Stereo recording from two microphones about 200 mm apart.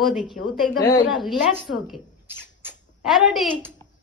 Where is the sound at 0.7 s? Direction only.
20° left (ahead or behind).